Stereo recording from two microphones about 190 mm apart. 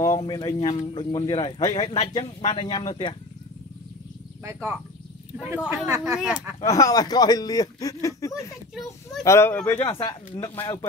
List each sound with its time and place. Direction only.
0.3 s speech: 25° left (ahead or behind)
4.5 s speech: 15° right (ahead or behind)
6.1 s a child's voice: 5° right (ahead or behind)
6.6 s speech: 20° left (ahead or behind)
8.7 s a child's voice: centre (ahead or behind)
9.2 s speech: 15° left (ahead or behind)
9.8 s speech: 25° left (ahead or behind)